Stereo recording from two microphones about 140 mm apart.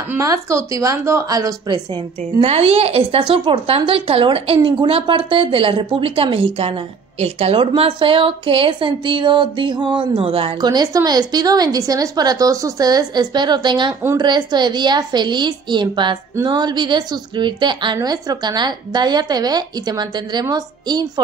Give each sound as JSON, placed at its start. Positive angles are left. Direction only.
{"t": 0.1, "sound": "a woman's voice", "side_deg": -20}
{"t": 2.4, "sound": "a woman's voice", "side_deg": -45}